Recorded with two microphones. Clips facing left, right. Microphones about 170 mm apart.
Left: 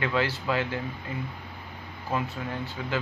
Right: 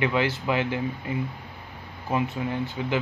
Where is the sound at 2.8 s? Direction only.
20° right (ahead or behind).